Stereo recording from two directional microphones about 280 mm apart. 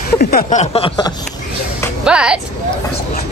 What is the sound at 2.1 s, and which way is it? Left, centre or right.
Speech, centre.